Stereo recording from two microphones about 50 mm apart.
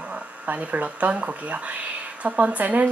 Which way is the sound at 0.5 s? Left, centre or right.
Right.